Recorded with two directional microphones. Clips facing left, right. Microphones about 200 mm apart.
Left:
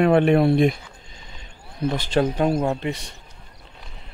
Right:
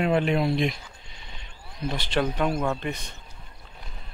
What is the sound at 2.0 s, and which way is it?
Speech, 40° left (ahead or behind).